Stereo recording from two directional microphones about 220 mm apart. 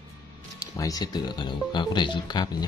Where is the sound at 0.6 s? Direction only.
15° left (ahead or behind).